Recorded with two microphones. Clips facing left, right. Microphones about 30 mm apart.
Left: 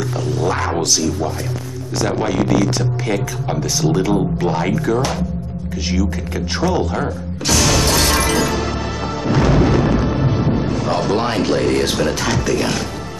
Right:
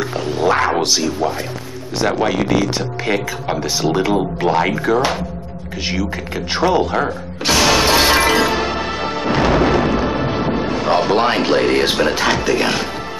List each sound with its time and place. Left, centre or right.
0.3 s music: right
2.0 s speech: right
6.5 s shatter: right